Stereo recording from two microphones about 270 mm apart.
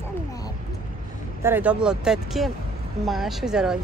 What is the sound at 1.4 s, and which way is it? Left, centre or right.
Child singing, centre.